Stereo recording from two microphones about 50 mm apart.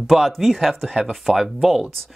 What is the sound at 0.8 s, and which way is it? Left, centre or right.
Speech, right.